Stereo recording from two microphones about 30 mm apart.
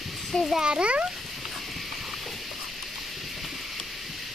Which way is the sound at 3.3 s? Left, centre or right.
Centre.